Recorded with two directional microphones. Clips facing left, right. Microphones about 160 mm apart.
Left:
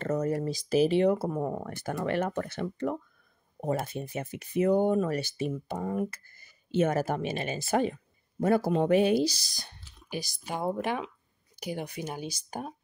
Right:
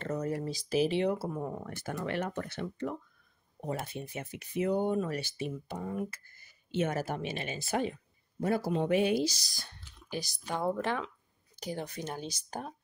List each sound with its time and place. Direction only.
0.0 s speech: 45° left (ahead or behind)
9.6 s speech: 15° left (ahead or behind)